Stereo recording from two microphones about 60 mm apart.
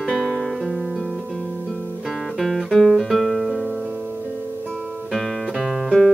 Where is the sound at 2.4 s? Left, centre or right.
Centre.